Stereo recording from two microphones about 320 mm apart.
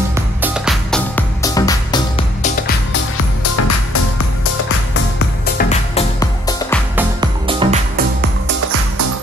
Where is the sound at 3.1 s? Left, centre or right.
Left.